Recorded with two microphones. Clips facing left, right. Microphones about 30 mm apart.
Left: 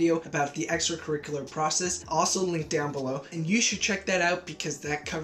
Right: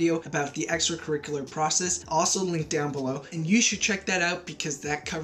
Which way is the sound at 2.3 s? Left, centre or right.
Centre.